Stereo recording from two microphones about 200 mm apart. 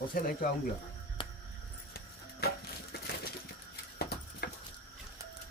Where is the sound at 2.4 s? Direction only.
50° left (ahead or behind).